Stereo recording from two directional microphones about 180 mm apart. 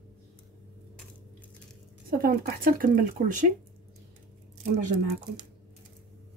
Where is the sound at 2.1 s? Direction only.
55° right (ahead or behind).